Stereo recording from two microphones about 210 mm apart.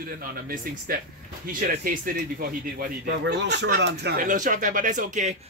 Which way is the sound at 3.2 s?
55° right (ahead or behind).